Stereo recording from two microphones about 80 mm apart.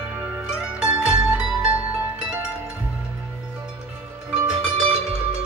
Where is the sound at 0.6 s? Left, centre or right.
Centre.